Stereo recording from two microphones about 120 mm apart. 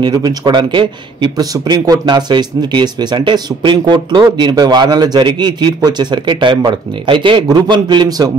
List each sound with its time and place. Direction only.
0.0 s a man's voice: 35° right (ahead or behind)